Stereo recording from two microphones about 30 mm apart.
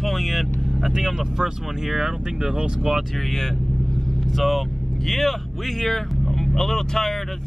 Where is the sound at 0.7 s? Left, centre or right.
Centre.